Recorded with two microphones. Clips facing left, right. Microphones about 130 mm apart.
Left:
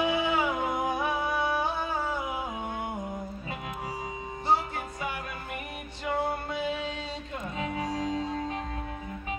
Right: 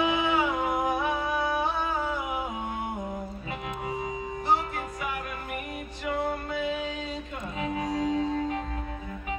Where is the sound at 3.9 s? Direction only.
30° left (ahead or behind).